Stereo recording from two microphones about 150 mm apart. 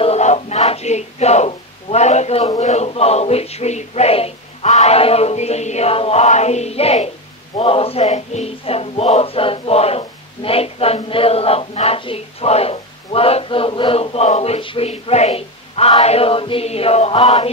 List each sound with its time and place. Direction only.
0.0 s speech: 45° left (ahead or behind)